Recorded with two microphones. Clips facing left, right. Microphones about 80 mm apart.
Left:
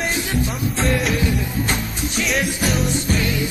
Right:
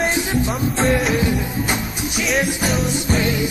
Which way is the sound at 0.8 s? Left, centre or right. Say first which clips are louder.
Right 2 dB; centre.